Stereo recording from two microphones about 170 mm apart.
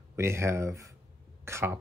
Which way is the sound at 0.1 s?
15° right (ahead or behind).